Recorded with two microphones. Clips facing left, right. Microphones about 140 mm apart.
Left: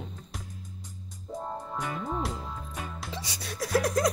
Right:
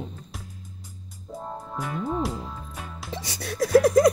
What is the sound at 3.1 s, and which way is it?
Music, 55° right (ahead or behind).